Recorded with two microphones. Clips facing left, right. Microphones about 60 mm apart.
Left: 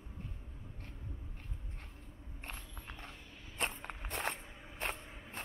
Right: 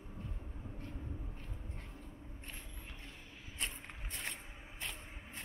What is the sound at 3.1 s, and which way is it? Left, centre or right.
Dog, centre.